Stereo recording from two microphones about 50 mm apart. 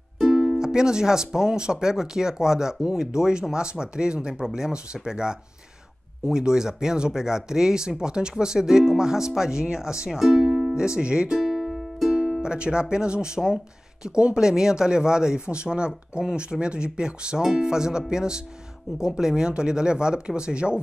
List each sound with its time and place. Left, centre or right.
0.2 s speech: centre
11.4 s music: centre
12.2 s speech: centre